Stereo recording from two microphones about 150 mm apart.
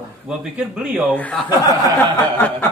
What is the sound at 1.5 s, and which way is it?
Speech, 25° left (ahead or behind).